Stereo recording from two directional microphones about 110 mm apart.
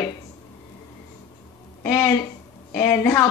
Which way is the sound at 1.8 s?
25° left (ahead or behind).